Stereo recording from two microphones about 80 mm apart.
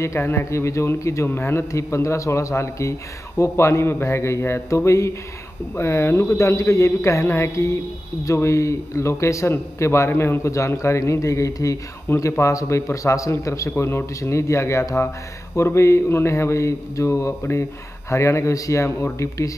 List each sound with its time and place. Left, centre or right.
0.0 s speech: left